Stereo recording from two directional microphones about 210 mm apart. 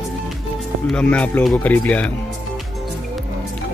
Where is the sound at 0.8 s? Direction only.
5° left (ahead or behind).